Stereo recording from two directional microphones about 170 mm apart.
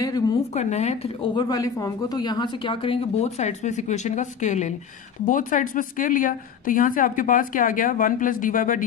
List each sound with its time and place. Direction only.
0.0 s a sound: 20° left (ahead or behind)
0.4 s speech: 40° left (ahead or behind)
1.3 s a woman's voice: 25° left (ahead or behind); by 8.8 s 50° left (ahead or behind)